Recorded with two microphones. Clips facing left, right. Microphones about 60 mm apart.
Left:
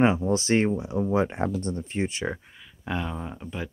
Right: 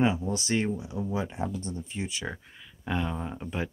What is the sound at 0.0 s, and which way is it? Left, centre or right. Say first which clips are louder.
Speech: left 5 dB; left.